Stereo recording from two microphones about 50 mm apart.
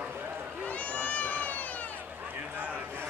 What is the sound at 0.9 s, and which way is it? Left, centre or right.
Cat, left.